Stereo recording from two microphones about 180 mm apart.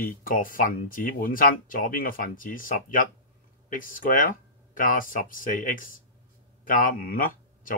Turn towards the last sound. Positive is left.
turn(degrees=50)  # may be behind; listen again after turning